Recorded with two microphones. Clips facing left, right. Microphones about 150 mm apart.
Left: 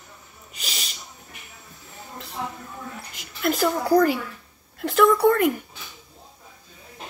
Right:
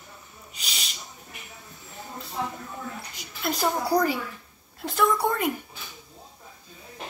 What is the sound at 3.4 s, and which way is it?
A woman's voice, 60° left (ahead or behind).